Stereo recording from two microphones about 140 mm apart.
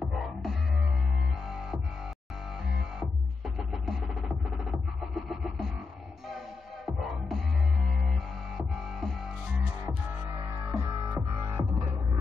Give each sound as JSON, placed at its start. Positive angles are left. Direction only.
{"t": 0.0, "sound": "music", "side_deg": 0}
{"t": 2.7, "sound": "music", "side_deg": 0}
{"t": 6.9, "sound": "music", "side_deg": 0}
{"t": 10.3, "sound": "music", "side_deg": -25}